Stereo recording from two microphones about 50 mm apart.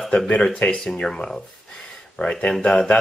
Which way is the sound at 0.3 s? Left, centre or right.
Left.